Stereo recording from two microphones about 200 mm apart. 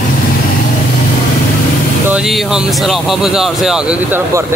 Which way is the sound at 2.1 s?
5° right (ahead or behind).